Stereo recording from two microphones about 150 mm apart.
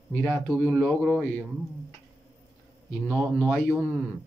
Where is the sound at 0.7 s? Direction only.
Centre (ahead or behind).